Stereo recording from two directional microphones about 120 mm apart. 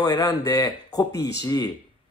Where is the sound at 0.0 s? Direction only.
35° left (ahead or behind).